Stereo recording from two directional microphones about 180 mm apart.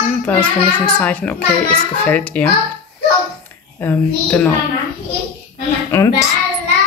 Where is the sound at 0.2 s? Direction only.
5° left (ahead or behind).